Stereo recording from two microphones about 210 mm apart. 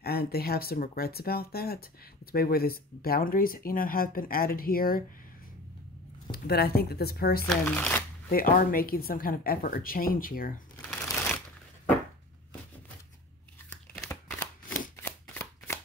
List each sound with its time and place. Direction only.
0.0 s speech: 45° left (ahead or behind)
6.3 s speech: 50° left (ahead or behind)
7.4 s speech: 5° left (ahead or behind)
8.3 s speech: 45° left (ahead or behind)
10.9 s shuffling cards: 5° left (ahead or behind)
15.0 s shuffling cards: 10° left (ahead or behind)